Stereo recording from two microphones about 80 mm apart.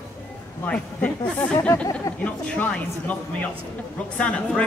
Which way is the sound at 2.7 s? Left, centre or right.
Centre.